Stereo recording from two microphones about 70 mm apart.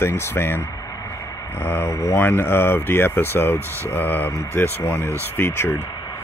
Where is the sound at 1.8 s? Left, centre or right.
Left.